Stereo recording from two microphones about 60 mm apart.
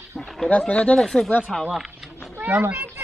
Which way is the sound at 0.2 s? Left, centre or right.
Centre.